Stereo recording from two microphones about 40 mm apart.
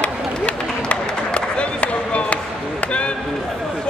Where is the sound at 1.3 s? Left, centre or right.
Left.